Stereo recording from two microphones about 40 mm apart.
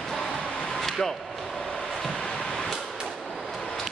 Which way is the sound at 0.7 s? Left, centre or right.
Centre.